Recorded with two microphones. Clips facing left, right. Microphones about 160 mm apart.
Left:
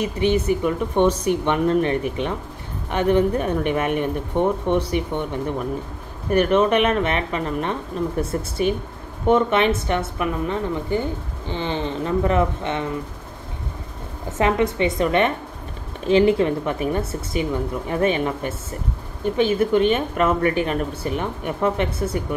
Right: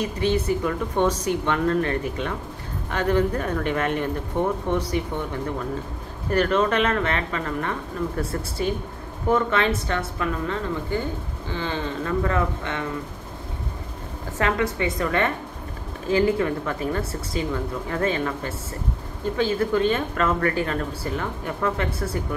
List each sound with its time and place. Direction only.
0.0 s a woman's voice: 15° left (ahead or behind)
14.4 s a woman's voice: 20° left (ahead or behind)